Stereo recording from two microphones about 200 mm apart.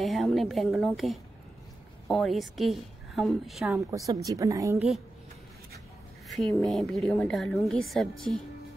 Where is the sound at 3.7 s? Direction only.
15° right (ahead or behind).